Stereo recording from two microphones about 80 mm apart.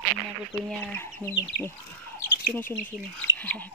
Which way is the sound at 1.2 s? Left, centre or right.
Right.